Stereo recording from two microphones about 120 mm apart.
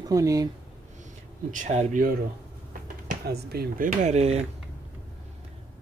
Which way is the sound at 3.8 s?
80° right.